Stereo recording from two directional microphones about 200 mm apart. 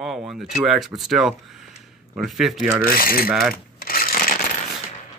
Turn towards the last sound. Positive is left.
turn(degrees=45)  # may be behind; listen again after turning